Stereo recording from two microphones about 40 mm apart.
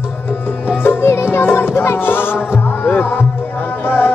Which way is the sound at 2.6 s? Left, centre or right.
Left.